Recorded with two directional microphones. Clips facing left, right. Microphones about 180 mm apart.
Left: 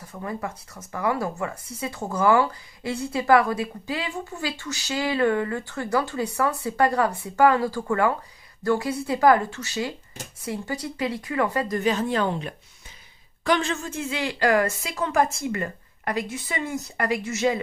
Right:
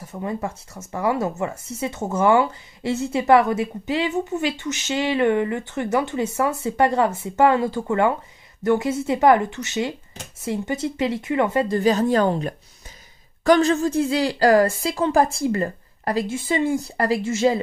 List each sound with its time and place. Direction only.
0.0 s a woman's voice: 25° right (ahead or behind)